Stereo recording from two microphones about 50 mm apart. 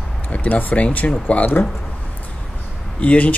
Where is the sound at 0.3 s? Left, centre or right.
Left.